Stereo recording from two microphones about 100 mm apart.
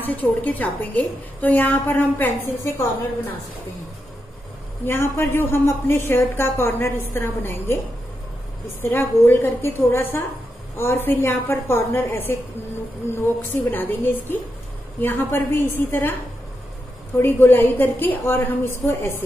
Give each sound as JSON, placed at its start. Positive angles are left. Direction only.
{"t": 0.0, "sound": "a woman's voice", "side_deg": 15}
{"t": 4.8, "sound": "a woman's voice", "side_deg": 25}
{"t": 8.8, "sound": "a woman's voice", "side_deg": 20}
{"t": 17.2, "sound": "a woman's voice", "side_deg": 20}